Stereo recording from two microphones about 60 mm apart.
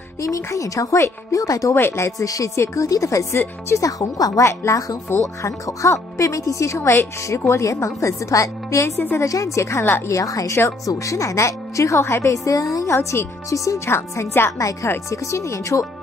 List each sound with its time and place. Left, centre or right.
0.2 s a woman's voice: left
1.8 s speech: left
2.1 s a woman's voice: left
14.6 s a woman's voice: left